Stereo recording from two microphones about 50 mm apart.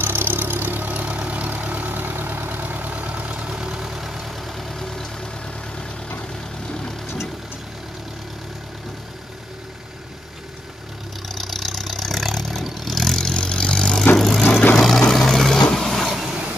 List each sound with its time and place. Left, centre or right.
0.0 s vehicle: right; by 5.0 s centre
11.2 s vehicle: centre
16.1 s vehicle: centre